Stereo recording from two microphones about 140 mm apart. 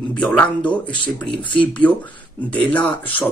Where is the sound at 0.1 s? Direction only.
10° left (ahead or behind).